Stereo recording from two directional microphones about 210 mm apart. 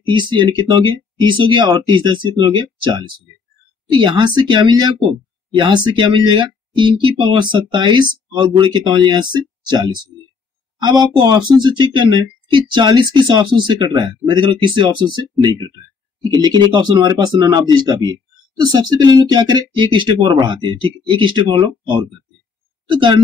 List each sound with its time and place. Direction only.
0.1 s speech: 20° right (ahead or behind)